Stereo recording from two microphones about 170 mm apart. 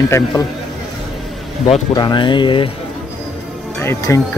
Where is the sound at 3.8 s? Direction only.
15° left (ahead or behind).